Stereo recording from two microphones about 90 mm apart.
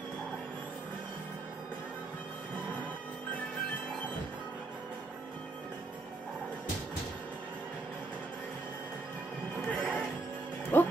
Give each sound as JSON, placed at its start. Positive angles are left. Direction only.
{"t": 9.7, "sound": "music", "side_deg": 15}
{"t": 10.7, "sound": "music", "side_deg": 25}